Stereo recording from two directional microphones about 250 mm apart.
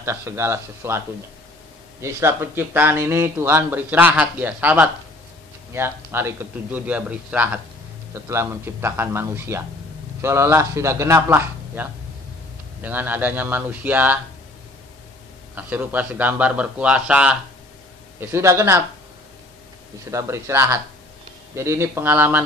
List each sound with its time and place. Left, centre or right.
0.0 s speech: centre
15.5 s speech: centre
20.1 s speech: centre